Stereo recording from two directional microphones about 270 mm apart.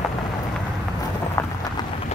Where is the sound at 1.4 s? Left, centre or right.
Centre.